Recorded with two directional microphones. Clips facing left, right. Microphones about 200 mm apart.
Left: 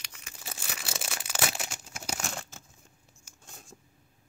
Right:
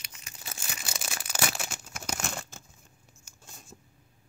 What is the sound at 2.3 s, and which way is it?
Crumpling, 5° left (ahead or behind).